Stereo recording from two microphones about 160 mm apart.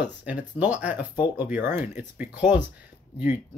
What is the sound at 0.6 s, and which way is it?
Speech, 10° right (ahead or behind).